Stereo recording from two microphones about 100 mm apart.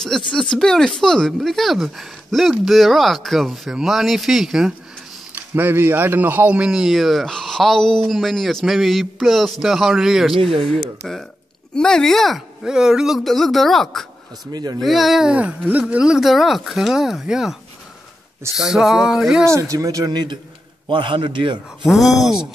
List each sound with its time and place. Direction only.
0.0 s speech: 5° left (ahead or behind)
5.3 s speech: 20° right (ahead or behind); by 14.5 s centre (ahead or behind)
14.5 s speech: 45° right (ahead or behind)
14.8 s speech: centre (ahead or behind)
18.6 s speech: 5° right (ahead or behind)
19.4 s a man's voice: 30° right (ahead or behind); by 21.5 s 55° right (ahead or behind)
21.8 s speech: centre (ahead or behind)